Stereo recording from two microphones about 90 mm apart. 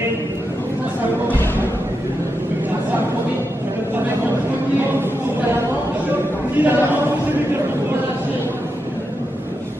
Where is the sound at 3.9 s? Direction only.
20° right (ahead or behind).